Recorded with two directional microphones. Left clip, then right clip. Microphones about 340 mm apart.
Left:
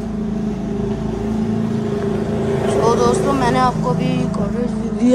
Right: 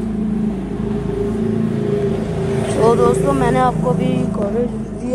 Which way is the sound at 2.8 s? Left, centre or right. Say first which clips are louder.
Right 3 dB; centre.